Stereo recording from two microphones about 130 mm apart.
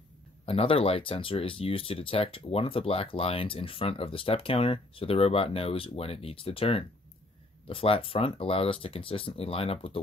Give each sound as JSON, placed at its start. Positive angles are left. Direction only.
{"t": 0.5, "sound": "speech", "side_deg": 45}